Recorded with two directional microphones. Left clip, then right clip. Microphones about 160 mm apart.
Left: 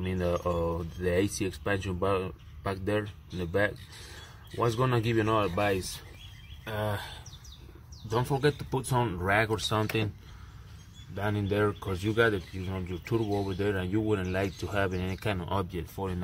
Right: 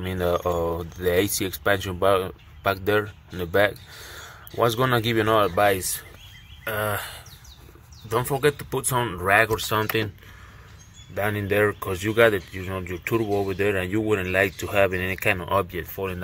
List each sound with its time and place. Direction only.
0.0 s speech: 30° right (ahead or behind)
6.6 s a sound: 5° right (ahead or behind)
8.1 s speech: centre (ahead or behind)
11.1 s speech: 5° right (ahead or behind)